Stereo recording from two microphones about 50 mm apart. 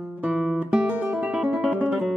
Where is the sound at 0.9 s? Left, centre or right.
Right.